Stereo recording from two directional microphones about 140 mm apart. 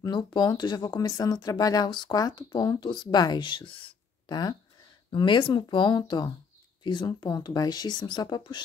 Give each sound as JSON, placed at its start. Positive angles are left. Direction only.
{"t": 0.0, "sound": "speech", "side_deg": 30}